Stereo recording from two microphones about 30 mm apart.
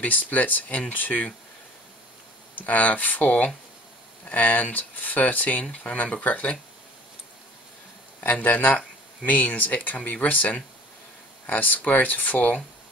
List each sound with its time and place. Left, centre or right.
0.0 s speech: left
0.9 s speech: left
2.5 s speech: left
4.5 s speech: left
4.7 s speech: left
8.2 s speech: left